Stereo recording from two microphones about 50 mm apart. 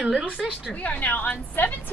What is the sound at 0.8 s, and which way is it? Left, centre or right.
Speech, left.